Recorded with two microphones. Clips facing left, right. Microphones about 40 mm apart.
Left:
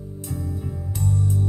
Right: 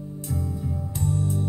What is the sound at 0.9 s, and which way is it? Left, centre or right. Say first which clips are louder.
Music: left 2 dB; right.